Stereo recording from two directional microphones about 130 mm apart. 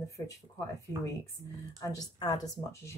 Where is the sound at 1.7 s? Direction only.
25° left (ahead or behind).